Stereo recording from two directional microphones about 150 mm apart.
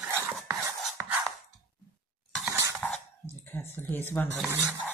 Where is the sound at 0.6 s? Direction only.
15° right (ahead or behind).